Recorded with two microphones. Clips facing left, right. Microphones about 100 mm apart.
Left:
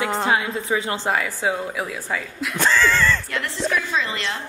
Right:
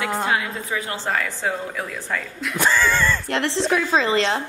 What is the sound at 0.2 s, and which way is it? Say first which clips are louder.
A woman's voice: left 2 dB; 25° left (ahead or behind).